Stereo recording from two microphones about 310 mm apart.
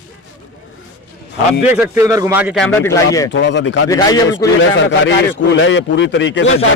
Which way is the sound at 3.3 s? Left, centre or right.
Left.